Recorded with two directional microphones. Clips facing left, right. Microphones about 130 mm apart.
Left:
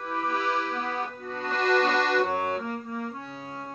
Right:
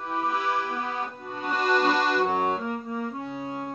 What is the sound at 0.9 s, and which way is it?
Accordion, 15° right (ahead or behind).